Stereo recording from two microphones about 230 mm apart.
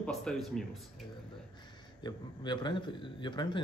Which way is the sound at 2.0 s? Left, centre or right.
Centre.